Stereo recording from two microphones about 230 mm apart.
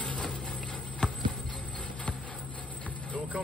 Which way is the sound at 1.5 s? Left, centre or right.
Centre.